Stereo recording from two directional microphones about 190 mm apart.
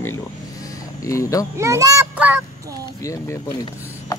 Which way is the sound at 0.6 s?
15° left (ahead or behind).